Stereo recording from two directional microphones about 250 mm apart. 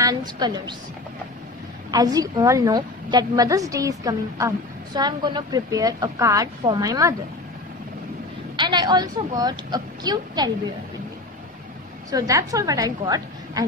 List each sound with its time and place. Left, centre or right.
0.0 s a woman's voice: centre
1.9 s a woman's voice: centre
8.5 s a woman's voice: centre
12.1 s a woman's voice: centre